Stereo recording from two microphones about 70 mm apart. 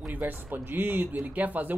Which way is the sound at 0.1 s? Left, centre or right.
Right.